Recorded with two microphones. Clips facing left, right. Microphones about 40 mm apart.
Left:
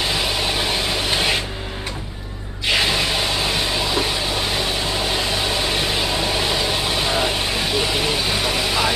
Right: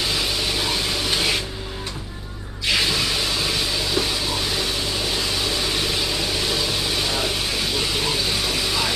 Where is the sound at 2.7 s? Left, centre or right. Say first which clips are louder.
Left 2 dB; centre.